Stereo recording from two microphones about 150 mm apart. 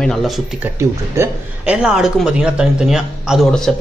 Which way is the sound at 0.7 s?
15° right (ahead or behind).